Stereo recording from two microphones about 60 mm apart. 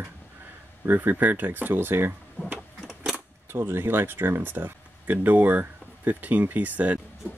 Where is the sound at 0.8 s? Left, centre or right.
Right.